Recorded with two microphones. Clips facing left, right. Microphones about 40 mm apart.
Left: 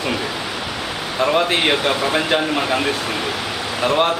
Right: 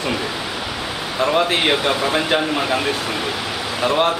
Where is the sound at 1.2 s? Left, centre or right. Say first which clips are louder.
Even; centre.